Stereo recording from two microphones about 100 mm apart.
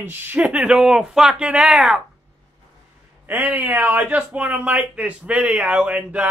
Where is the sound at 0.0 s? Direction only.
20° right (ahead or behind).